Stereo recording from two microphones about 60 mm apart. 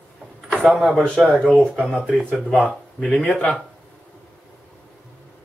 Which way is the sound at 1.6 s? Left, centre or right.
Centre.